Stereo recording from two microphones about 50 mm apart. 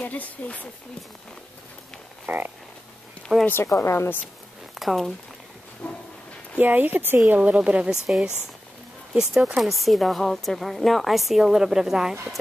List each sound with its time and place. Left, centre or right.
0.0 s speech: left
2.2 s a sound: right
3.3 s speech: centre
3.6 s speech: left
4.7 s speech: centre
5.8 s a sound: left
6.6 s speech: right
7.4 s speech: right
9.1 s speech: centre
9.6 s a woman's voice: centre